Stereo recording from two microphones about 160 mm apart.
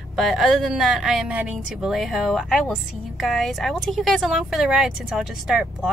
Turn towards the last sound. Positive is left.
turn(degrees=-5)  # may be behind; listen again after turning